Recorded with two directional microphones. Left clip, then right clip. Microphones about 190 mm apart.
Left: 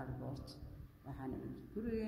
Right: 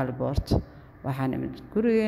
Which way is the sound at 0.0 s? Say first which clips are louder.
Right 19 dB; 40° right (ahead or behind).